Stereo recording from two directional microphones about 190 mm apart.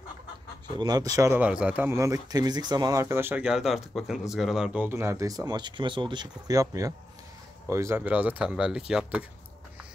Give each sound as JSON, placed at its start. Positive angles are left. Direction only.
{"t": 0.7, "sound": "speech", "side_deg": -20}